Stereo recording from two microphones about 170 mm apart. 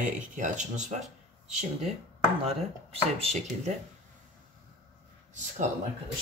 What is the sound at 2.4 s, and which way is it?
Speech, 35° right (ahead or behind).